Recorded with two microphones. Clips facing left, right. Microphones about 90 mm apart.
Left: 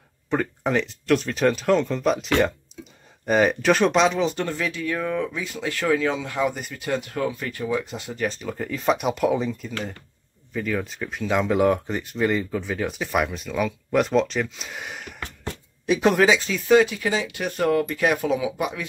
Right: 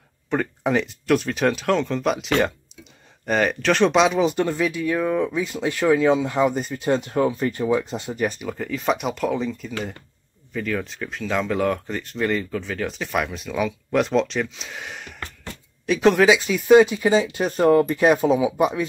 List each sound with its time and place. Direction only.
0.3 s speech: centre (ahead or behind)
8.5 s speech: centre (ahead or behind)
16.3 s speech: 10° right (ahead or behind)